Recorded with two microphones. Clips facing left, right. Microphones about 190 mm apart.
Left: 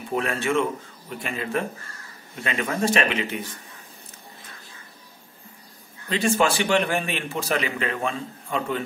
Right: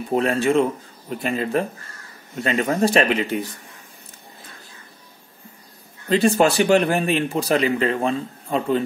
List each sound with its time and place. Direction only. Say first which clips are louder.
0.1 s a man's voice: right 5 dB; 35° right (ahead or behind)
6.0 s a man's voice: right 5 dB; 40° right (ahead or behind)